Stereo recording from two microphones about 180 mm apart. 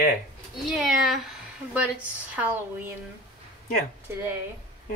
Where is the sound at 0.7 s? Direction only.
Centre (ahead or behind).